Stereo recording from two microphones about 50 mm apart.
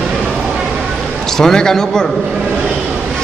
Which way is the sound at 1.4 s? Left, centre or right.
Centre.